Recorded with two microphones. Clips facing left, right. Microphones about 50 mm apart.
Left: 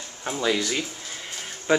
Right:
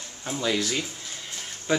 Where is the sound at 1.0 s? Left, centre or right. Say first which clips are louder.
Left 2 dB; left.